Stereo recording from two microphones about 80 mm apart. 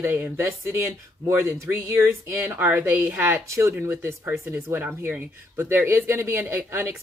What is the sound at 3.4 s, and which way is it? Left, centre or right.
Speech, right.